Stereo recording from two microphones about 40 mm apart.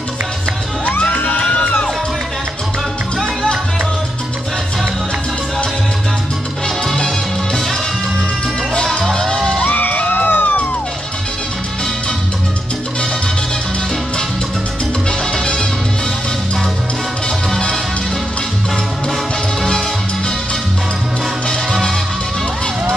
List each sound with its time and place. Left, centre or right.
8.7 s music: centre
9.7 s music: left
15.3 s music: centre